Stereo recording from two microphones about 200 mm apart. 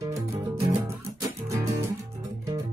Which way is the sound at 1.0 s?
15° right (ahead or behind).